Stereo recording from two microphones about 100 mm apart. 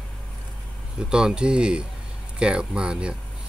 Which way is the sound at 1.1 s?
5° right (ahead or behind).